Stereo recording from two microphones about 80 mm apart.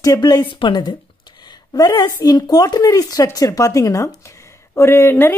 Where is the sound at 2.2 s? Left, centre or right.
Left.